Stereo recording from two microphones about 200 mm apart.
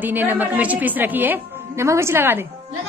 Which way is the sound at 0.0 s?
10° right (ahead or behind).